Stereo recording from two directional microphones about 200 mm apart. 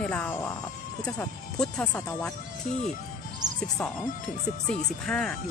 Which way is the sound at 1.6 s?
5° left (ahead or behind).